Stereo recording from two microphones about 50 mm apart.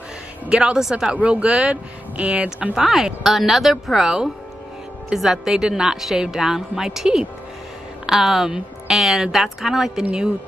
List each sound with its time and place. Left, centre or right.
0.5 s speech: centre
2.8 s speech: centre